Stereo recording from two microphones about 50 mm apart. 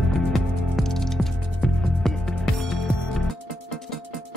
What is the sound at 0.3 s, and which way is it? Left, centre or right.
Music, centre.